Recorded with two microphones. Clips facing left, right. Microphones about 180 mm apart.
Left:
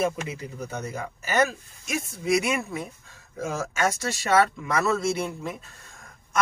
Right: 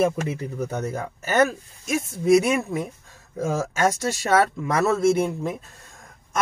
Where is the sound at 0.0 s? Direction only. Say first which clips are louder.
Right 5 dB; 50° right (ahead or behind).